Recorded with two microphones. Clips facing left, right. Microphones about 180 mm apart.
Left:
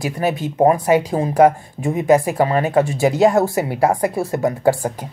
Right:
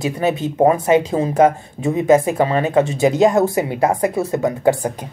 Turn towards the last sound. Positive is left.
turn(degrees=-20)  # may be behind; listen again after turning